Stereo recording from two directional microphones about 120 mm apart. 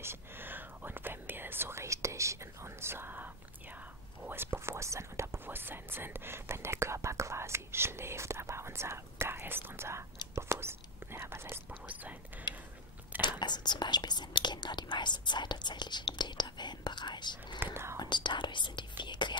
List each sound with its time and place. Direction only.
0.0 s whispering: 20° right (ahead or behind)
4.2 s speech: 20° right (ahead or behind)
10.3 s whispering: 20° right (ahead or behind)
13.2 s speech: 40° left (ahead or behind)